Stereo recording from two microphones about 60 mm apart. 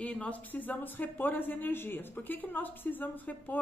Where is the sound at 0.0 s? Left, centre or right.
Left.